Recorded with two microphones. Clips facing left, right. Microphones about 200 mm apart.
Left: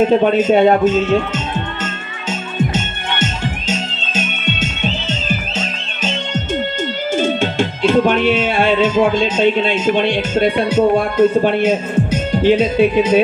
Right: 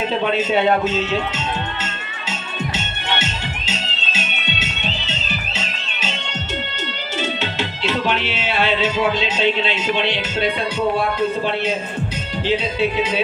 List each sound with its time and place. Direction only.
0.0 s music: 45° left (ahead or behind)
2.7 s music: 50° left (ahead or behind)